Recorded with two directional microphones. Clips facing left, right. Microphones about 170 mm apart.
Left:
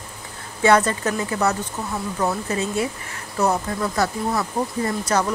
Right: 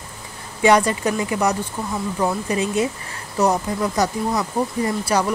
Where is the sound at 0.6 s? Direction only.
15° right (ahead or behind).